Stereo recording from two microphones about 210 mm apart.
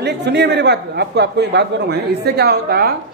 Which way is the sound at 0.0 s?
55° right (ahead or behind).